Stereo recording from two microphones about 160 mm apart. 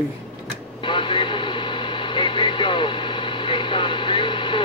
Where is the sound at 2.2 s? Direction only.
30° left (ahead or behind).